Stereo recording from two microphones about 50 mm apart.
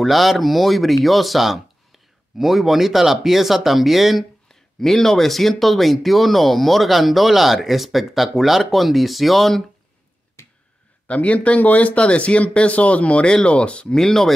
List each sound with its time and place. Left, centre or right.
0.0 s speech: centre
11.1 s speech: left
13.9 s speech: centre